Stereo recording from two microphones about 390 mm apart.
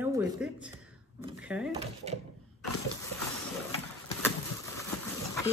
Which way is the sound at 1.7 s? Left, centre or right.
Centre.